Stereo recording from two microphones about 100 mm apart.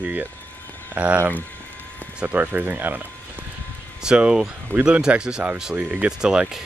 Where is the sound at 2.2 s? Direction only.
15° right (ahead or behind).